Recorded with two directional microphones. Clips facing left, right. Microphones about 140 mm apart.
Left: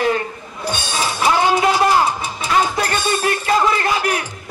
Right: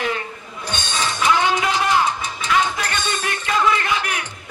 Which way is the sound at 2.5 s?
35° left (ahead or behind).